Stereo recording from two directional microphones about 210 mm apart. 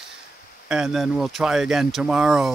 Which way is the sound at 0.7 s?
Centre (ahead or behind).